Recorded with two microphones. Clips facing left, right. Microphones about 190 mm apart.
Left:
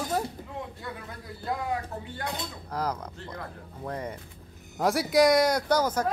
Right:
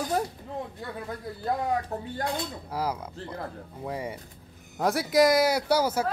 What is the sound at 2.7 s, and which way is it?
Speech, 10° right (ahead or behind).